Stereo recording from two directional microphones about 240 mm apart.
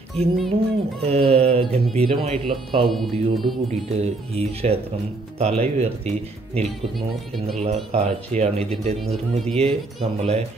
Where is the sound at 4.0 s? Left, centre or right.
Right.